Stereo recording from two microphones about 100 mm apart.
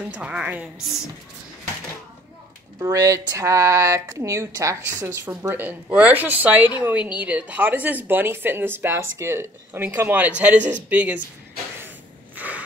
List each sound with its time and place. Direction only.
0.1 s a woman's voice: 10° right (ahead or behind)
2.8 s a woman's voice: 35° right (ahead or behind); by 11.1 s 15° right (ahead or behind)
12.4 s a sound: 15° right (ahead or behind)